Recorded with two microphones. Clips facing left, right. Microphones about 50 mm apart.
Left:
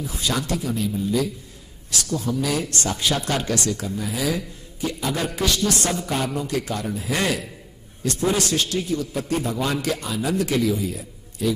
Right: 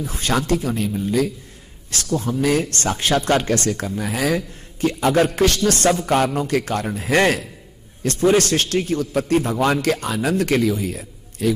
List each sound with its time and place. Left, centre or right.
0.0 s a man's voice: right
2.0 s a man's voice: right